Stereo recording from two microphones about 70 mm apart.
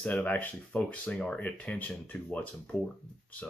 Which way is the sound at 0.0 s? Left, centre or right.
Centre.